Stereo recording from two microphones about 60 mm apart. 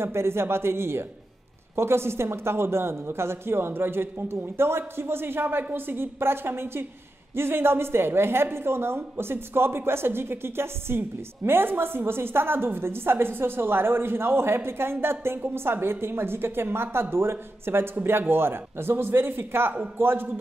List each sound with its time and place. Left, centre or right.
0.0 s a woman's voice: right